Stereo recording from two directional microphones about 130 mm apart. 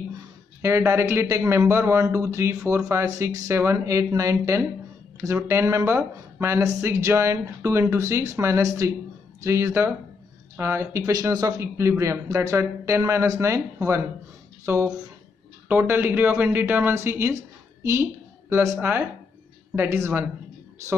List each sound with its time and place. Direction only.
0.6 s speech: 20° right (ahead or behind)
18.5 s speech: 20° right (ahead or behind)